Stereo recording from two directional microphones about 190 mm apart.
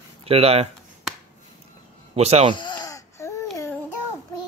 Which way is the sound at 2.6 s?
25° left (ahead or behind).